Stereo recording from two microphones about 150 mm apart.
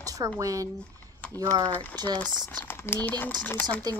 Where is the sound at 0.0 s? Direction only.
25° right (ahead or behind).